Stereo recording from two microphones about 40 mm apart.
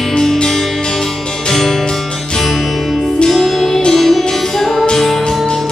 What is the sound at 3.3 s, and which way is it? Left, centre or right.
Music, centre.